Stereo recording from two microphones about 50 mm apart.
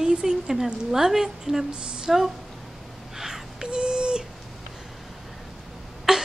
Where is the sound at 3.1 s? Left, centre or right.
Centre.